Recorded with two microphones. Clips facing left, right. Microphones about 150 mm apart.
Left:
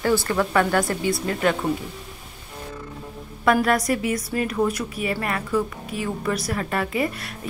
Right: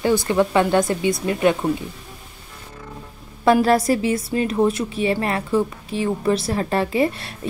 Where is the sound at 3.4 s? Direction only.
30° right (ahead or behind).